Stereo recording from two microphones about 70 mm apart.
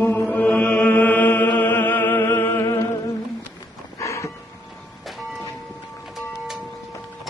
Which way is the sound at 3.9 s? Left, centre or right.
Left.